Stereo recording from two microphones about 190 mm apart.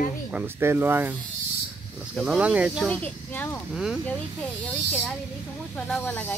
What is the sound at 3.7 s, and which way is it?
Speech, centre (ahead or behind).